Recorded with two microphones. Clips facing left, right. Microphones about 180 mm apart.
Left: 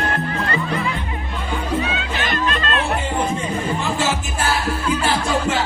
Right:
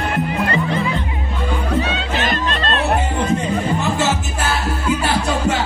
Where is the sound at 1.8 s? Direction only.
30° right (ahead or behind).